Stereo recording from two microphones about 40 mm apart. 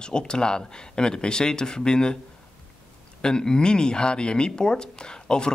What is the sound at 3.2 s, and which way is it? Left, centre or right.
Speech, centre.